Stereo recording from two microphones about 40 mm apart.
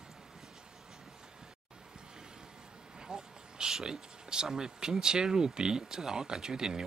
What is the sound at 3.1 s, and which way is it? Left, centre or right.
Speech, centre.